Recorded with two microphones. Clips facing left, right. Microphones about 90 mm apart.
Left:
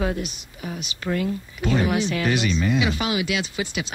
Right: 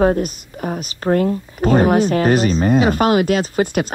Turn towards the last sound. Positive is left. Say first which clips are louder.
# right 10 dB
turn(degrees=-50)  # may be behind; listen again after turning